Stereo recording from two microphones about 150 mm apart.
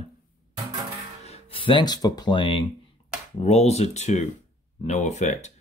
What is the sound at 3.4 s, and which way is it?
Speech, 45° left (ahead or behind).